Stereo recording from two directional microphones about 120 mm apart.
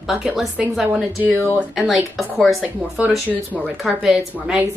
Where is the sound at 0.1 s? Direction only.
5° right (ahead or behind).